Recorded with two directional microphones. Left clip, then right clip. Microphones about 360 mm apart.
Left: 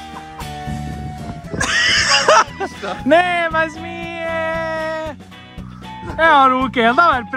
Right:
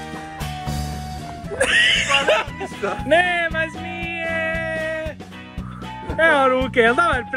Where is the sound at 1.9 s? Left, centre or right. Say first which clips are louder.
Left 4 dB; left.